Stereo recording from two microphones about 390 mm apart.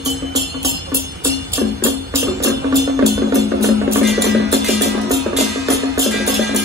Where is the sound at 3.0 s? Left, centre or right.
Centre.